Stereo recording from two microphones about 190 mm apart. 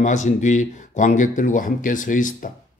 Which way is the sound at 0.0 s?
40° left (ahead or behind).